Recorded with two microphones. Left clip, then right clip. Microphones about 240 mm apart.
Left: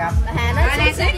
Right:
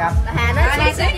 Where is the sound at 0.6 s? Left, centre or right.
Centre.